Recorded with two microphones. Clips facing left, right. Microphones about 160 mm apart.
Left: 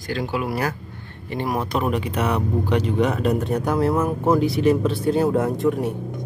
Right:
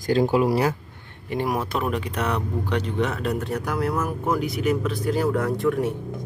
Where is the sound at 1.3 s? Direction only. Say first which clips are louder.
Left 1 dB; 10° right (ahead or behind); by 5.9 s 20° left (ahead or behind).